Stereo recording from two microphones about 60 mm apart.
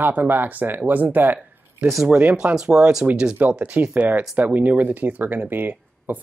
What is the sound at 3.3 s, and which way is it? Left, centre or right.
Speech, right.